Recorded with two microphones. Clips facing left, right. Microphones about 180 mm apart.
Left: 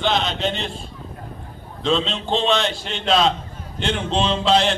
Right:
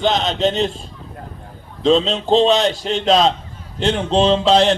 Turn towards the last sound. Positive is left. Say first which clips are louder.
# right 5 dB
turn(degrees=-40)  # may be behind; listen again after turning